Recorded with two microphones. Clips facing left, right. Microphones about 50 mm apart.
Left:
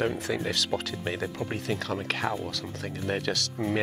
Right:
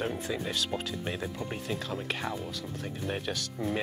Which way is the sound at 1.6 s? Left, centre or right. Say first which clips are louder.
Left 5 dB; left.